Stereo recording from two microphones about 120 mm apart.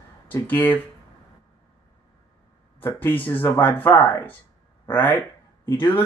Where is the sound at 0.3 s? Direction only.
15° left (ahead or behind).